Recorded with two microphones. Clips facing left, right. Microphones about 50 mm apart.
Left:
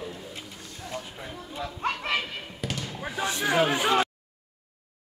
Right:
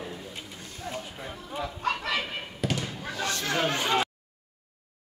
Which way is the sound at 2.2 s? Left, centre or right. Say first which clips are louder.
Even; centre.